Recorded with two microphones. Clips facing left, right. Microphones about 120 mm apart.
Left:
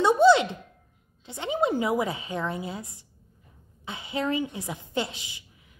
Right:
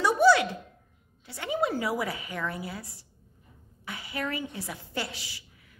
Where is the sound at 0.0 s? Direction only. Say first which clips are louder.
Left 3 dB; 25° left (ahead or behind).